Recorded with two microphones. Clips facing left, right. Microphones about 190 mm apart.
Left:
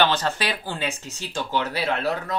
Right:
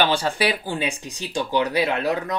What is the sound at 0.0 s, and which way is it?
Speech, 10° right (ahead or behind).